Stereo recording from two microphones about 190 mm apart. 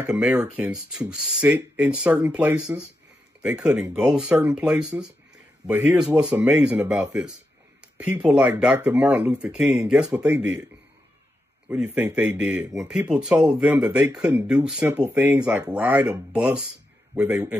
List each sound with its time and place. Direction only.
0.0 s speech: 5° right (ahead or behind)
11.8 s speech: 10° right (ahead or behind)